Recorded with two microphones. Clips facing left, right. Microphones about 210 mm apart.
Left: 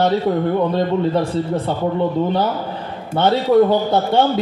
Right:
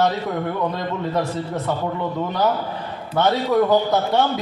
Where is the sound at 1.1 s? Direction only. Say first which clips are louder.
Left 5 dB; 30° left (ahead or behind).